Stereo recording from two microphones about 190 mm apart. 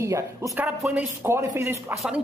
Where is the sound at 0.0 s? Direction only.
15° right (ahead or behind).